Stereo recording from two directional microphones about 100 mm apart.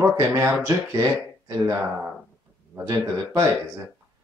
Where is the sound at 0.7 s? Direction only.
35° right (ahead or behind).